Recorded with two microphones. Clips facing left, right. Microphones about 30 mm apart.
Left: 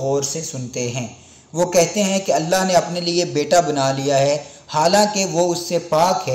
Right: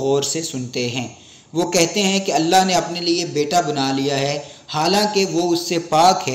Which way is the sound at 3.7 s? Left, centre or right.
Right.